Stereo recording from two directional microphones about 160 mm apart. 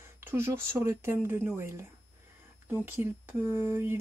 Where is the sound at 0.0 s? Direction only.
15° right (ahead or behind).